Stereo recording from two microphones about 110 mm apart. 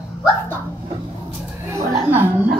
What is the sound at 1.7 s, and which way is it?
Speech, 15° right (ahead or behind).